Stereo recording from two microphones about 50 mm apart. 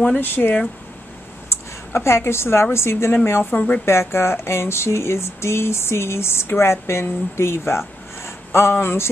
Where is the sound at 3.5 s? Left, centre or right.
Left.